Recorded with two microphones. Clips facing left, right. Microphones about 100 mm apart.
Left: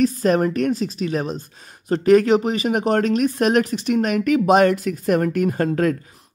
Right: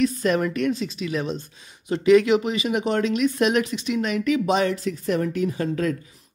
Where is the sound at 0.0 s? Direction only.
40° left (ahead or behind).